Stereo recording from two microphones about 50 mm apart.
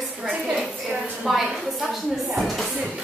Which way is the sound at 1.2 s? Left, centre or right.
Centre.